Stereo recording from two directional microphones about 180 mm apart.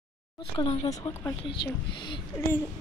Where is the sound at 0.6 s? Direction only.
35° left (ahead or behind).